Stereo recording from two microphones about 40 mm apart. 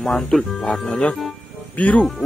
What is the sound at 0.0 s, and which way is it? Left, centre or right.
Speech, centre.